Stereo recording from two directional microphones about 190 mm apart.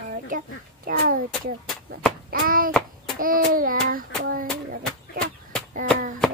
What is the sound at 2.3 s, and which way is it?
Hands, 50° right (ahead or behind).